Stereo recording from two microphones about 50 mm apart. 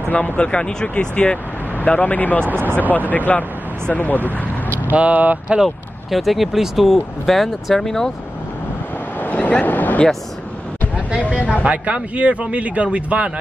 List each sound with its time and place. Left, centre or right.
0.1 s speech: left
2.4 s speech: right
3.1 s speech: left
4.9 s speech: right
5.6 s speech: centre
9.2 s a sound: left
11.1 s speech: right